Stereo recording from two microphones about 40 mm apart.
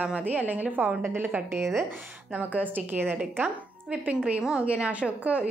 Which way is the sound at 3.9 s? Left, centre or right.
Right.